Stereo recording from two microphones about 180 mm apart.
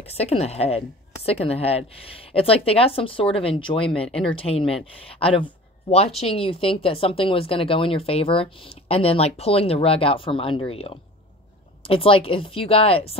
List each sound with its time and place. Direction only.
0.0 s speech: 35° left (ahead or behind)
4.1 s speech: 5° left (ahead or behind)
4.4 s speech: 30° left (ahead or behind)